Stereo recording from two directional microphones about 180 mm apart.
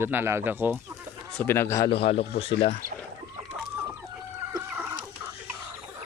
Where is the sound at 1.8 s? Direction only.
30° left (ahead or behind).